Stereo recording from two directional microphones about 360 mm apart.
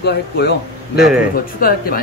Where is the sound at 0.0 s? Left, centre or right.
Left.